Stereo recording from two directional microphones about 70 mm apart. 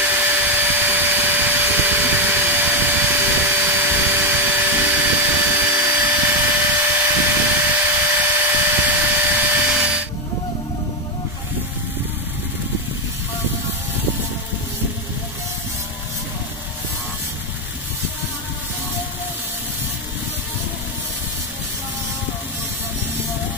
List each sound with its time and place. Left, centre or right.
0.0 s vacuum cleaner: right